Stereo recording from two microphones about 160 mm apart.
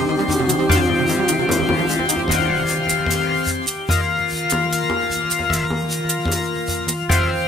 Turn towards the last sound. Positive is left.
turn(degrees=0)  # may be behind; listen again after turning